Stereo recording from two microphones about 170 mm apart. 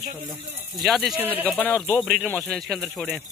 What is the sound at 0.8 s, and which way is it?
Speech, centre (ahead or behind).